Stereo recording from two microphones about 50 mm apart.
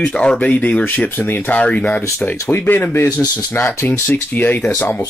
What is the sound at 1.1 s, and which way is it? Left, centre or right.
Speech, left.